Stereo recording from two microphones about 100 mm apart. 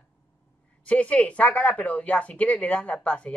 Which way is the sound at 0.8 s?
15° left (ahead or behind).